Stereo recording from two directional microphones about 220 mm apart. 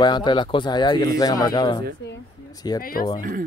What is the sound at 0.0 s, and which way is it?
Speech, 20° left (ahead or behind).